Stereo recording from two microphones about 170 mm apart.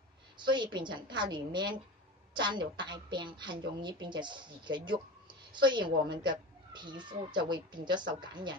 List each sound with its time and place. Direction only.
0.4 s a woman's voice: 25° right (ahead or behind)